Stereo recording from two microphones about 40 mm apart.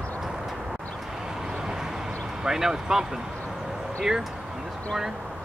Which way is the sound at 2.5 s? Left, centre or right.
Centre.